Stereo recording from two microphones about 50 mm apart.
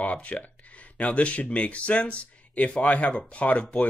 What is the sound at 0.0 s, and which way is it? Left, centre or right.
Speech, left.